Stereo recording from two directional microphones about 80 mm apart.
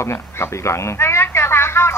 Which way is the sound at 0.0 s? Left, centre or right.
Left.